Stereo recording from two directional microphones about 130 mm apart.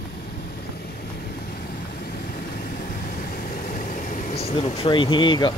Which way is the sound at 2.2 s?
90° left.